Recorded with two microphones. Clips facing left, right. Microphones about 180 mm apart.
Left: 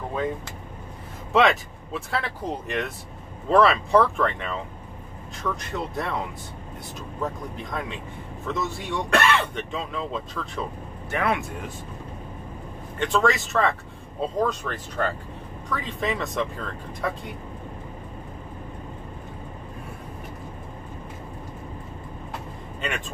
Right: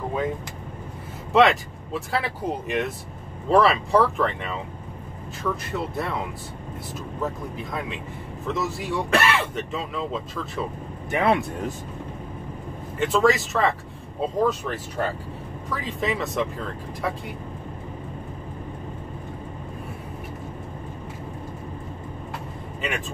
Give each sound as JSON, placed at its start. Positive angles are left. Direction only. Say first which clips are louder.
{"t": 1.3, "sound": "speech", "louder": "right 2 dB", "side_deg": 0}
{"t": 11.1, "sound": "speech", "louder": "right 4 dB", "side_deg": -25}
{"t": 13.0, "sound": "speech", "louder": "right 3 dB", "side_deg": -5}
{"t": 22.8, "sound": "speech", "louder": "right 1 dB", "side_deg": 0}